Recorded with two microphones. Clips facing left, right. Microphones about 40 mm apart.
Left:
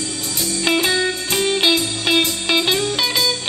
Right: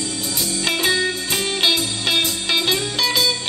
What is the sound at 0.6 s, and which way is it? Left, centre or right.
Music, centre.